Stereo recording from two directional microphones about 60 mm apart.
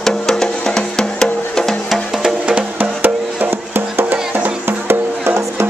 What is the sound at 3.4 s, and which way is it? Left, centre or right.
Music, right.